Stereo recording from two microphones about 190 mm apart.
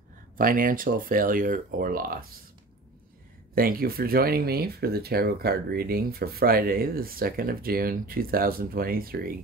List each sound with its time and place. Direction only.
0.4 s speech: 45° right (ahead or behind)
3.5 s speech: 50° right (ahead or behind)